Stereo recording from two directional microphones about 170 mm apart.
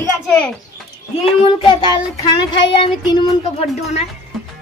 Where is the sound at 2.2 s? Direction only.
30° left (ahead or behind).